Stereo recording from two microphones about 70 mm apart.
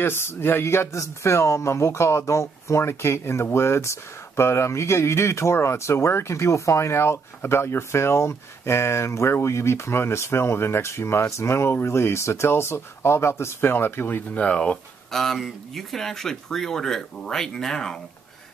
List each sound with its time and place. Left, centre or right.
0.0 s speech: left; by 14.8 s centre
15.0 s speech: centre